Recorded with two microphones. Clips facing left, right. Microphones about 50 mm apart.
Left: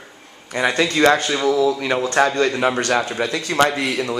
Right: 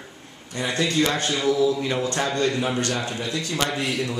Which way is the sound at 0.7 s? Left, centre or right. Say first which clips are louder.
Left 6 dB; left.